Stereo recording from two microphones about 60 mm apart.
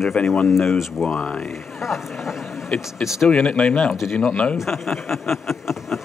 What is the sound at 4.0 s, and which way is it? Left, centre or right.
Speech, centre.